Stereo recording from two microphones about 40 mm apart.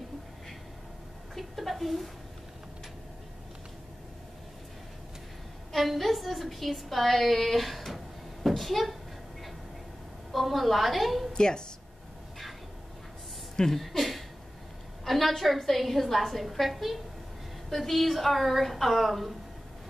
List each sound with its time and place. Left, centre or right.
1.3 s a sound: centre
5.7 s a woman's voice: centre
10.3 s a woman's voice: centre
11.3 s a woman's voice: centre
13.7 s a woman's voice: centre